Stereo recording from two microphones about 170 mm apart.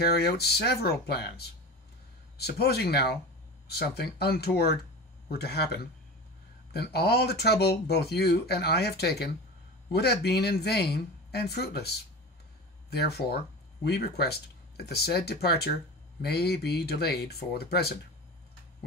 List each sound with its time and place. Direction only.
0.0 s speech: 70° left (ahead or behind)